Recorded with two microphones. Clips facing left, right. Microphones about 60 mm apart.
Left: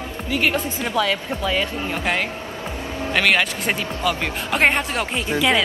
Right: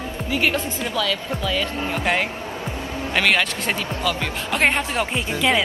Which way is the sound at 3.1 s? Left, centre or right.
Centre.